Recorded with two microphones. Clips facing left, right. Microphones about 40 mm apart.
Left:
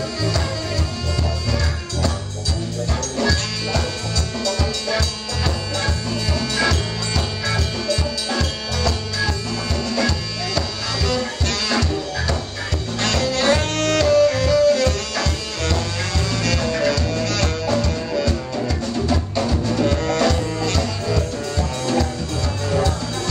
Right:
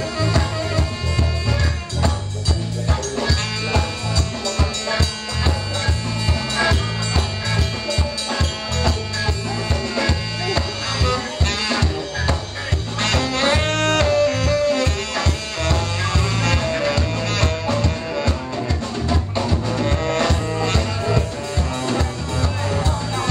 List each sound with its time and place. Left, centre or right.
0.2 s music: right
2.9 s music: right
13.0 s music: right